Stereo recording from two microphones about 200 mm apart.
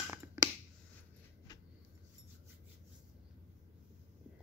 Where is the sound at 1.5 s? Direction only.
20° left (ahead or behind).